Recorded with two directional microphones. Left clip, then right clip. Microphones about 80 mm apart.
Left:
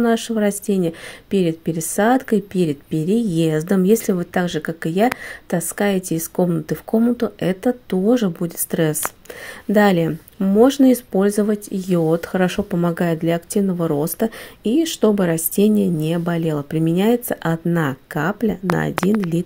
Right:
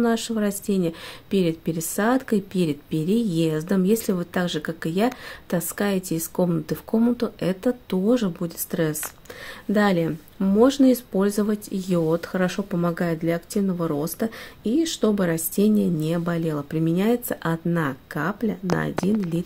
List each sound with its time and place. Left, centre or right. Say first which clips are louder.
0.0 s speech: left 5 dB; left
2.5 s speech: left 4 dB; left
3.5 s speech: left 6 dB; left
10.4 s speech: left 4 dB; left